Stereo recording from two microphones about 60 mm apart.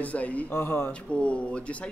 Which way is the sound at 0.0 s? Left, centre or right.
Left.